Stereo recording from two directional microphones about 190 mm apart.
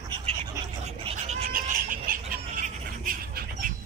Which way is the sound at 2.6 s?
45° right (ahead or behind).